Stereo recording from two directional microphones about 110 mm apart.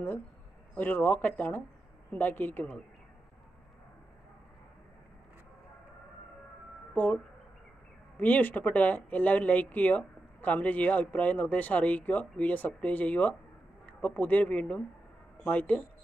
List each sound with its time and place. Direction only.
0.7 s speech: 15° left (ahead or behind)
6.9 s a sound: 15° left (ahead or behind)
8.2 s speech: 15° left (ahead or behind)